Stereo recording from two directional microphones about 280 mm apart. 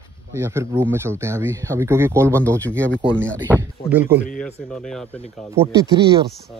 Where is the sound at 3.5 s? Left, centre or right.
Centre.